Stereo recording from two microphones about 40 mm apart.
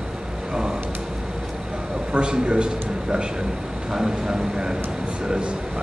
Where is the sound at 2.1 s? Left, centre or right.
Right.